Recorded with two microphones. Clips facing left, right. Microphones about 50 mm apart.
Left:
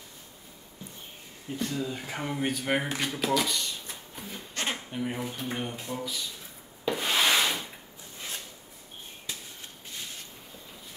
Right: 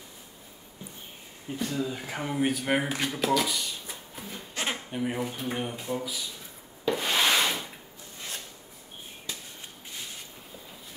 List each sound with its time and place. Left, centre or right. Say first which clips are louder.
1.6 s speech: right 1 dB; centre
6.9 s rub: right 1 dB; centre